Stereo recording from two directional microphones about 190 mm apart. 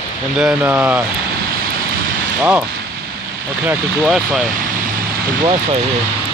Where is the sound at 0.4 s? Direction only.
10° right (ahead or behind).